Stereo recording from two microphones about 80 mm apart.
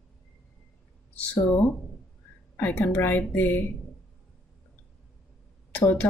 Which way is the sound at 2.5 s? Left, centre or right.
Left.